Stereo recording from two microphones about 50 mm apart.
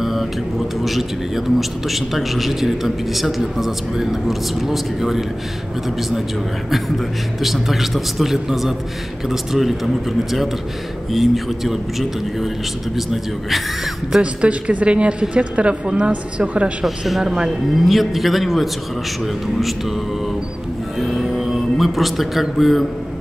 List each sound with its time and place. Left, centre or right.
0.0 s mantra: centre
0.8 s a man's voice: centre
11.1 s a man's voice: centre
14.2 s a woman's voice: right
16.8 s speech: centre
17.7 s a man's voice: centre
21.0 s speech: centre